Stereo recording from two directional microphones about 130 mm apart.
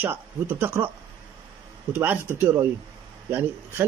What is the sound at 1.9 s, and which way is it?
A man's voice, 15° right (ahead or behind).